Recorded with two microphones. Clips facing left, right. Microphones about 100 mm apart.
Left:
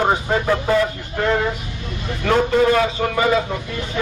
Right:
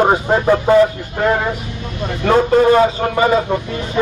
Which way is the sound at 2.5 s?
35° right (ahead or behind).